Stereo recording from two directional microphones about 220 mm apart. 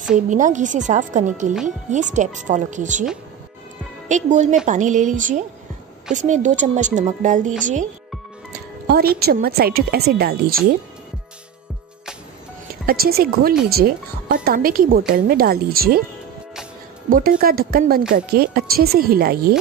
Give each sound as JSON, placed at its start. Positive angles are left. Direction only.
{"t": 0.1, "sound": "a woman's voice", "side_deg": -35}
{"t": 4.1, "sound": "a woman's voice", "side_deg": -35}
{"t": 8.8, "sound": "a woman's voice", "side_deg": -45}
{"t": 12.8, "sound": "a woman's voice", "side_deg": -45}
{"t": 17.1, "sound": "a woman's voice", "side_deg": -40}